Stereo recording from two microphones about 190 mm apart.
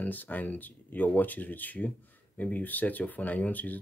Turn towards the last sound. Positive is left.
turn(degrees=10)  # may be behind; listen again after turning